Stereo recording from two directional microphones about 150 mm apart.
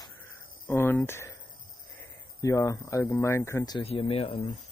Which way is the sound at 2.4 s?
20° left (ahead or behind).